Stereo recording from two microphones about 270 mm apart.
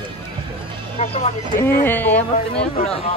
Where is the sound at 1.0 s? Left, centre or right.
Left.